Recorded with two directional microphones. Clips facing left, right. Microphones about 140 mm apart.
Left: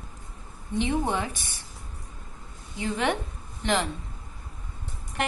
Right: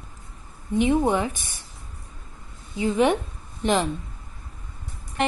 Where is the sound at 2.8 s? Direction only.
15° right (ahead or behind).